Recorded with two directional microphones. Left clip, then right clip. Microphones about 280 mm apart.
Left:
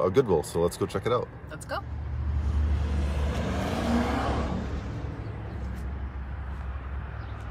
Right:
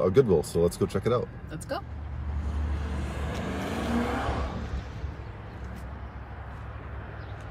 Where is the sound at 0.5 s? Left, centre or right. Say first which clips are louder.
Right 2 dB; left.